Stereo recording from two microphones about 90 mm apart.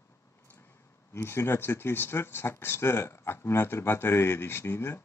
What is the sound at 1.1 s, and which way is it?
Speech, 25° left (ahead or behind).